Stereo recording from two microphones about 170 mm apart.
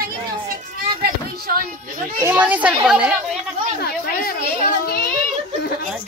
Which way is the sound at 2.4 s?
10° right (ahead or behind).